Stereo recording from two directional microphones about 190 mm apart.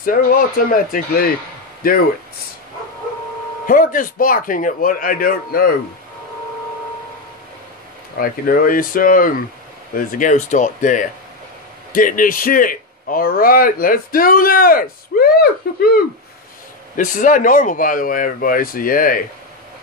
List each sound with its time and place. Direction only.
0.0 s a man's voice: 45° left (ahead or behind)
3.6 s a man's voice: 45° left (ahead or behind)
8.2 s a man's voice: 50° left (ahead or behind)
16.9 s a man's voice: 45° left (ahead or behind)